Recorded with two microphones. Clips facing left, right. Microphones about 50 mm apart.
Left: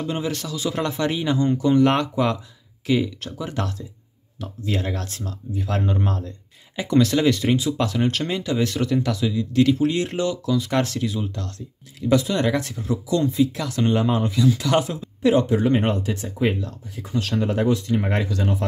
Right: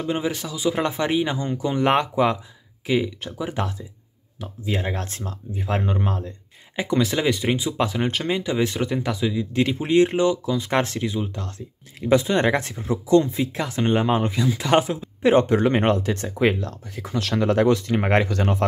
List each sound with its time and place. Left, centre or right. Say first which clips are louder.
0.0 s speech: right 1 dB; centre
5.9 s speech: even; centre; by 14.9 s right
15.4 s speech: right 1 dB; right